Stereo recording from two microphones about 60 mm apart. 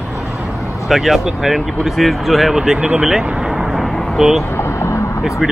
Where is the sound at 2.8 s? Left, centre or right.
Right.